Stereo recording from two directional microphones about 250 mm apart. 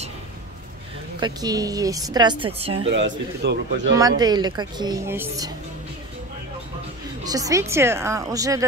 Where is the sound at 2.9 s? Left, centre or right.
Right.